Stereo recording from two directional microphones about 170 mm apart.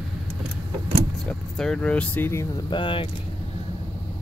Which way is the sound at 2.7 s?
30° left (ahead or behind).